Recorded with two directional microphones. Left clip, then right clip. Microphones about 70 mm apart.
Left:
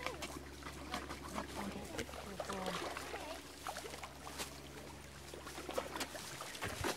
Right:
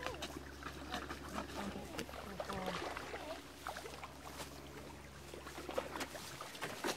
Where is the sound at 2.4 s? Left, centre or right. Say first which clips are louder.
Left 1 dB; left.